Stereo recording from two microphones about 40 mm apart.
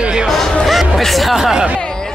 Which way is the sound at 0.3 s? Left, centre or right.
Centre.